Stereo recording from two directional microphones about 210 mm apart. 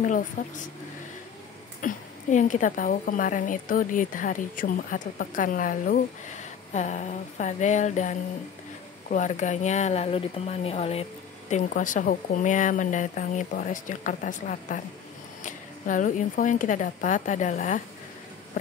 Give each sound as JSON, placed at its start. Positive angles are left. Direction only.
{"t": 0.4, "sound": "a woman's voice", "side_deg": 40}
{"t": 1.8, "sound": "a woman's voice", "side_deg": 40}